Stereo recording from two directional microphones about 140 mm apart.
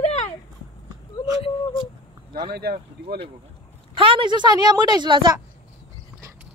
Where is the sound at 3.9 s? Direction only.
35° right (ahead or behind).